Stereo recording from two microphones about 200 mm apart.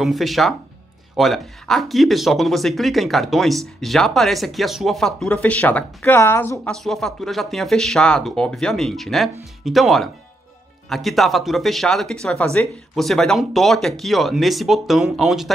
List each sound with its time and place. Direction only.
0.0 s speech: centre (ahead or behind)